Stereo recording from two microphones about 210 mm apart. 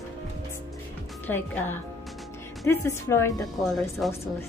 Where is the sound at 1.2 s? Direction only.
10° left (ahead or behind).